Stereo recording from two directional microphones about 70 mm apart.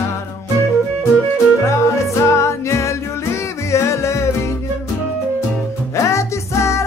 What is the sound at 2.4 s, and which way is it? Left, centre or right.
Music, left.